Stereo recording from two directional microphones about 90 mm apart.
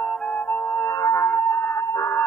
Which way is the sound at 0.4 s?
20° left (ahead or behind).